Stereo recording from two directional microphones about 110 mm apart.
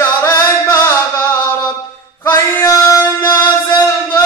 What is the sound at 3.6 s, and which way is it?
Music, 35° left (ahead or behind).